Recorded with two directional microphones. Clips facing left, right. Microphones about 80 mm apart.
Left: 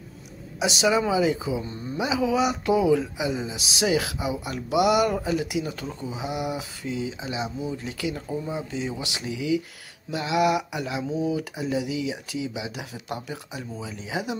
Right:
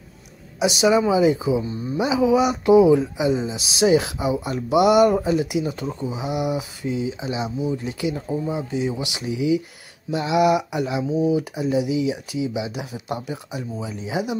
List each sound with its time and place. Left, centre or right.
0.6 s speech: centre